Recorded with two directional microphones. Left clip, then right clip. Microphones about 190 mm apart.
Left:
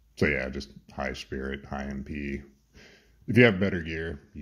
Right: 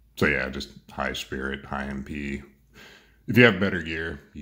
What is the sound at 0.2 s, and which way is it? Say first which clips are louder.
Speech: right 3 dB; 15° left (ahead or behind).